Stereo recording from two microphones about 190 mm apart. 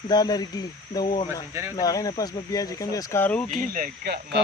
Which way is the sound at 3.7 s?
55° right (ahead or behind).